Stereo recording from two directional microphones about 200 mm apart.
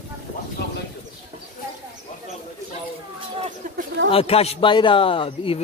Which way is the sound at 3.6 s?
40° right (ahead or behind).